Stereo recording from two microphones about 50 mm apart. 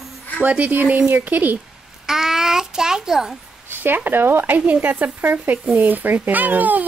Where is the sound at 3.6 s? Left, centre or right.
Right.